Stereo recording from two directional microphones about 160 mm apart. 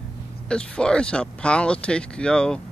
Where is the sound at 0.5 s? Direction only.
5° left (ahead or behind).